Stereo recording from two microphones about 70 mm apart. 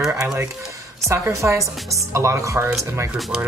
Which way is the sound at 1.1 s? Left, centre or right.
Right.